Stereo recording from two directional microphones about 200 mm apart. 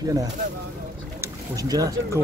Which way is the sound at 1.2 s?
15° right (ahead or behind).